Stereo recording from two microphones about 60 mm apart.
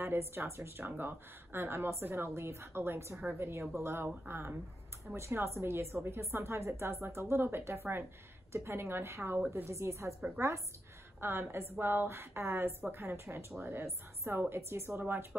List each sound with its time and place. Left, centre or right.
0.0 s a woman's voice: right
11.1 s a woman's voice: right